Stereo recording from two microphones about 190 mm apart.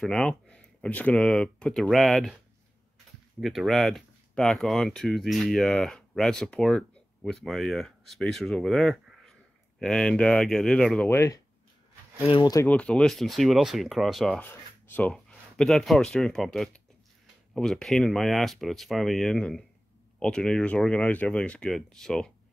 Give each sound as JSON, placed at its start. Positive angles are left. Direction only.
{"t": 0.0, "sound": "speech", "side_deg": 5}
{"t": 3.3, "sound": "speech", "side_deg": 0}
{"t": 12.2, "sound": "speech", "side_deg": 25}
{"t": 12.6, "sound": "speech", "side_deg": 5}